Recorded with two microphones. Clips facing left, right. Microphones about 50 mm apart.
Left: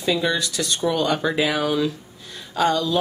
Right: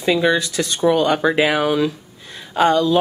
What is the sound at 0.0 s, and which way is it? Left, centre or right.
Speech, right.